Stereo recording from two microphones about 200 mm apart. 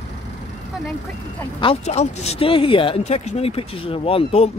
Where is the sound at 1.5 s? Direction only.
30° left (ahead or behind).